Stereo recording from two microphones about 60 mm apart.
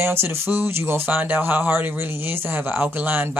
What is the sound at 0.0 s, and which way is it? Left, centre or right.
Speech, right.